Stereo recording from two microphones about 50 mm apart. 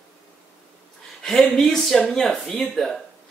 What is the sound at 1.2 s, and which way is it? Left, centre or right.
Speech, centre.